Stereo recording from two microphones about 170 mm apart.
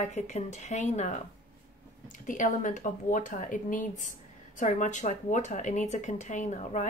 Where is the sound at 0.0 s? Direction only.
45° left (ahead or behind).